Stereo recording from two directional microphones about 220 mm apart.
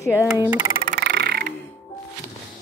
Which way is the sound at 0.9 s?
50° right (ahead or behind).